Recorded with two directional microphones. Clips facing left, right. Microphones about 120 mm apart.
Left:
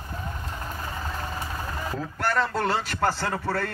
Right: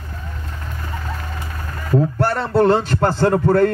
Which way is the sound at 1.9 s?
35° right (ahead or behind).